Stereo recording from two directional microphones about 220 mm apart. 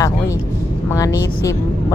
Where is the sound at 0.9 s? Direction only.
15° left (ahead or behind).